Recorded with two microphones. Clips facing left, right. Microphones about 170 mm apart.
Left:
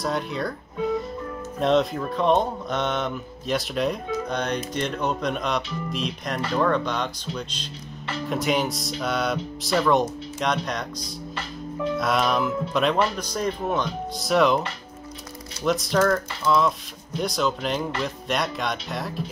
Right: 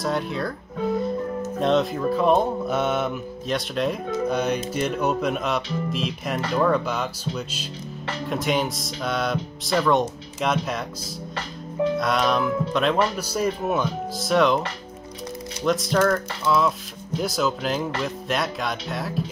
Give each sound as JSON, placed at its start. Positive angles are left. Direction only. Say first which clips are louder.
{"t": 0.0, "sound": "speech", "louder": "right 1 dB", "side_deg": 0}
{"t": 15.6, "sound": "speech", "louder": "right 1 dB", "side_deg": 0}